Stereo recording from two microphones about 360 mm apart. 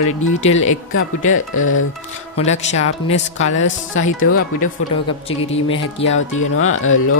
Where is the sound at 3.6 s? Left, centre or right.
Left.